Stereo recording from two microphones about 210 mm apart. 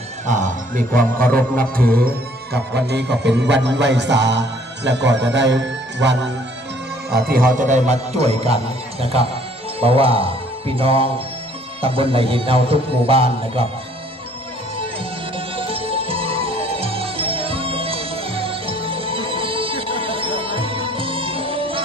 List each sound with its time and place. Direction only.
0.3 s a man's voice: 35° right (ahead or behind)
1.1 s music: 10° left (ahead or behind)
1.6 s music: 45° right (ahead or behind)
7.1 s a man's voice: 45° right (ahead or behind); by 11.1 s 25° right (ahead or behind)
11.8 s music: 25° right (ahead or behind)
15.3 s music: 25° right (ahead or behind)